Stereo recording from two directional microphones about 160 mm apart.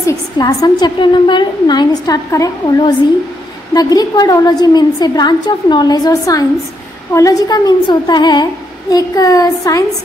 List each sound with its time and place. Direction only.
0.0 s a woman's voice: 20° left (ahead or behind)